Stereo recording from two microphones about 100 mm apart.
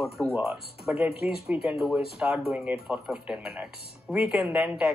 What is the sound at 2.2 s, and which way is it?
Speech, 15° right (ahead or behind).